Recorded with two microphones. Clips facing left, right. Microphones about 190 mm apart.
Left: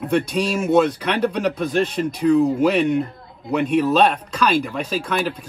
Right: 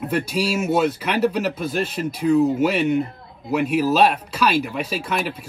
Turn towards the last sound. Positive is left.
turn(degrees=-5)  # may be behind; listen again after turning